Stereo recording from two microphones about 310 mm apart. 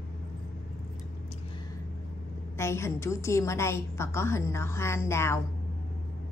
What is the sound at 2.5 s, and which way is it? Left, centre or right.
A woman's voice, centre.